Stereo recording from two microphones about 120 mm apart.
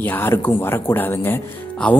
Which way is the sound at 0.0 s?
15° left (ahead or behind).